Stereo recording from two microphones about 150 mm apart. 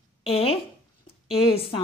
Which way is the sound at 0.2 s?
40° left (ahead or behind).